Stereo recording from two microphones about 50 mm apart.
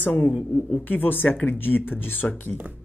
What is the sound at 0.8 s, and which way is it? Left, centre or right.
Speech, left.